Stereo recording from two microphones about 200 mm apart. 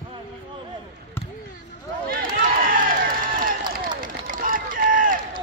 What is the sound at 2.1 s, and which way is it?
Run, 45° right (ahead or behind).